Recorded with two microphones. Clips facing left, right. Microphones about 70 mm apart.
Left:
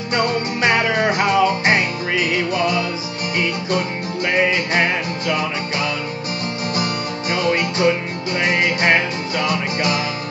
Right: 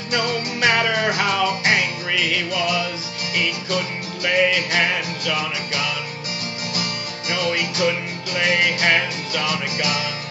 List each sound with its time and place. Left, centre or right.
0.1 s music: left
0.7 s music: left
1.6 s music: left
4.3 s music: left